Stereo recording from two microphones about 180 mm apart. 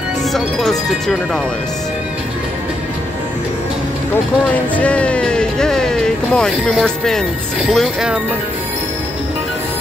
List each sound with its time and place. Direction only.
0.3 s speech: centre (ahead or behind)
4.5 s speech: 5° left (ahead or behind)